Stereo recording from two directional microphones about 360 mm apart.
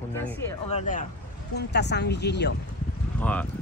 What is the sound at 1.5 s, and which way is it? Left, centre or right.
A woman's voice, left.